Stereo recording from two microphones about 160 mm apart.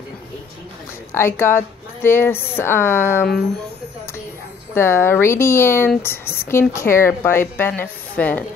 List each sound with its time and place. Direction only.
1.1 s speech: 15° left (ahead or behind)
4.7 s speech: 15° left (ahead or behind)